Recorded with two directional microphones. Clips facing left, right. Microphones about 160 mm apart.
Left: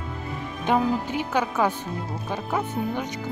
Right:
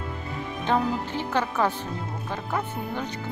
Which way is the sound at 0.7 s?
10° left (ahead or behind).